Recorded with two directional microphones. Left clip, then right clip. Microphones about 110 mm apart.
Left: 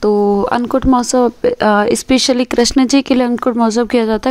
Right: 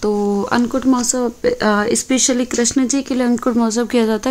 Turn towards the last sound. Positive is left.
turn(degrees=45)  # may be behind; listen again after turning